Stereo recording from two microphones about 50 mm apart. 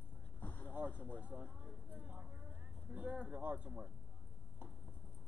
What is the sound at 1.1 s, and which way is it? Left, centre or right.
Speech, right.